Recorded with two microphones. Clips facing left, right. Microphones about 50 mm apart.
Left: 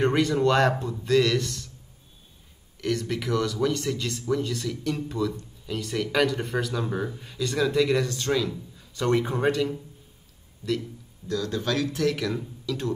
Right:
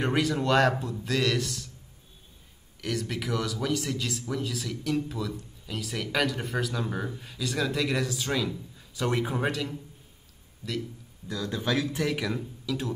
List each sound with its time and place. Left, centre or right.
0.0 s speech: centre
2.8 s speech: centre
11.2 s speech: centre